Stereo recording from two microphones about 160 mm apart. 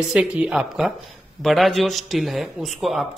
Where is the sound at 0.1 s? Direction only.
5° right (ahead or behind).